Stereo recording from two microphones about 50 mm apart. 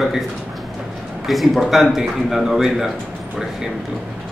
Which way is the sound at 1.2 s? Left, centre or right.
Centre.